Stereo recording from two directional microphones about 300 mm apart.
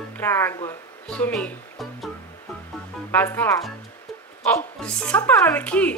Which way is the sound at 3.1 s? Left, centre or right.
Centre.